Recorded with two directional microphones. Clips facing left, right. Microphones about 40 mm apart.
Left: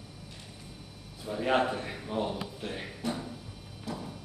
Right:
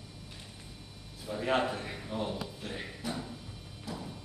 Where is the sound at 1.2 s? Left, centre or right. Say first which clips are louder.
Left 3 dB; centre.